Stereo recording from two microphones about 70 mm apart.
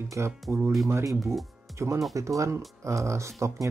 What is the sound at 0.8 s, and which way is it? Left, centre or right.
Speech, right.